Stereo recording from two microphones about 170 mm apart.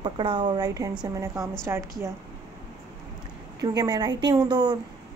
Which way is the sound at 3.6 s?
25° right (ahead or behind).